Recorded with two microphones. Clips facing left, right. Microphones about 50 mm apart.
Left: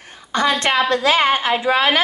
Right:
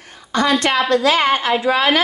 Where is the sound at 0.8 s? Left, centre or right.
Left.